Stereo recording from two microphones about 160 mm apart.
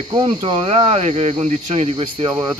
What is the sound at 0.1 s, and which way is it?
Speech, 30° right (ahead or behind).